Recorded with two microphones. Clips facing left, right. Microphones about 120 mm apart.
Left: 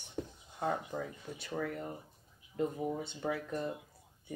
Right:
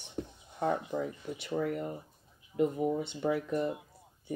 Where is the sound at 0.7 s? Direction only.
20° right (ahead or behind).